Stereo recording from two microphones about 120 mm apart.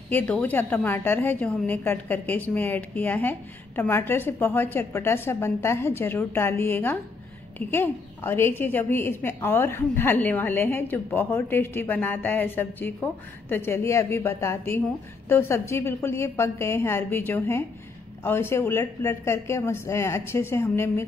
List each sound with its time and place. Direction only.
0.1 s a woman's voice: 15° left (ahead or behind)